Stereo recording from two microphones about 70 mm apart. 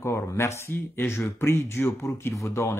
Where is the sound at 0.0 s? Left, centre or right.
Left.